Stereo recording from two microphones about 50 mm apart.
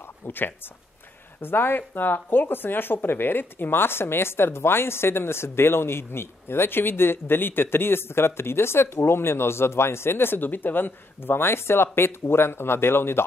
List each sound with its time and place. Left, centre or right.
1.4 s speech: left